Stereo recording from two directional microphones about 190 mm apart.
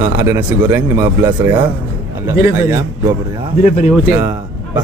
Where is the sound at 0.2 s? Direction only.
10° right (ahead or behind).